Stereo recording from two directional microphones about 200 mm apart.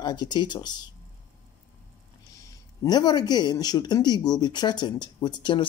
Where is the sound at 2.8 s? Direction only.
20° left (ahead or behind).